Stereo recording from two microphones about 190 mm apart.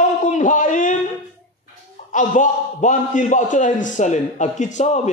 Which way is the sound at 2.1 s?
40° left (ahead or behind).